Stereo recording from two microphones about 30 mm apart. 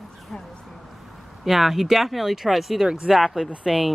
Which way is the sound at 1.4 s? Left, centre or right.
Centre.